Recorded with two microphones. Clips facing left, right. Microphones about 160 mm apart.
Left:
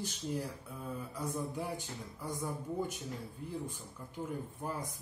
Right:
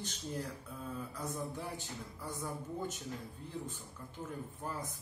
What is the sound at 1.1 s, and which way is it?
A man's voice, 15° left (ahead or behind).